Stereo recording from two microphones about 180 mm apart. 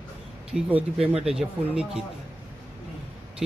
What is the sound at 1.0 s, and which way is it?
Speech, 35° right (ahead or behind).